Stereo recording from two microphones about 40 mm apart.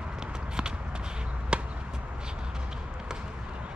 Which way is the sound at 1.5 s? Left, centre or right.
Right.